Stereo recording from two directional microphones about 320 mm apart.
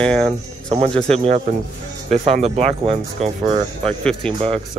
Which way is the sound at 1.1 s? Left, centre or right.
Centre.